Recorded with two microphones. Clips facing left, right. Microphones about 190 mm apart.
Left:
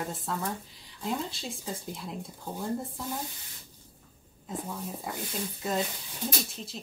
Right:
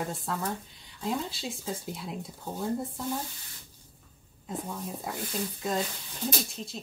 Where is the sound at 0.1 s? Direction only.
Centre (ahead or behind).